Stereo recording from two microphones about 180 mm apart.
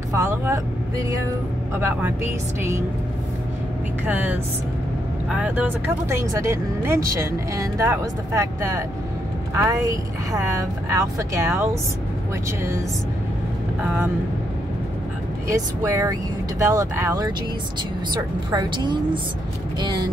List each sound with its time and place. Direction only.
0.1 s a woman's voice: 15° right (ahead or behind)
4.0 s a woman's voice: 10° right (ahead or behind)
6.0 s a woman's voice: 15° right (ahead or behind)
15.4 s a woman's voice: 15° right (ahead or behind)